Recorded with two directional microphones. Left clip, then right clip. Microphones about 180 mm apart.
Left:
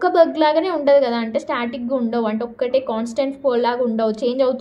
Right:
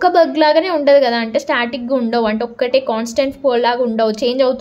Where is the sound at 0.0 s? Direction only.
25° right (ahead or behind).